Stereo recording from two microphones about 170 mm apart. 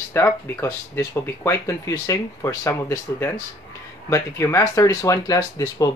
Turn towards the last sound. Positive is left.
turn(degrees=20)  # may be behind; listen again after turning